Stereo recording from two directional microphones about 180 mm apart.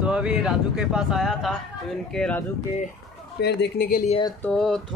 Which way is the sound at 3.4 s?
65° left (ahead or behind).